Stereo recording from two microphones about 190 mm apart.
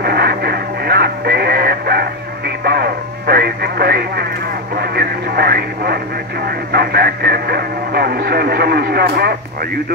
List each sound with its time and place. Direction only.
0.0 s radio: 55° right (ahead or behind)
6.7 s speech: 55° right (ahead or behind)